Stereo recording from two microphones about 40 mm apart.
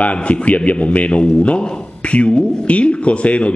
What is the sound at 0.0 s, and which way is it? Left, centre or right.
A man's voice, left.